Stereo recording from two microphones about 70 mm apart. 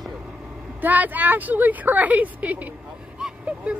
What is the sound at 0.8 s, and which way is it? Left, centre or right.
A woman's voice, right.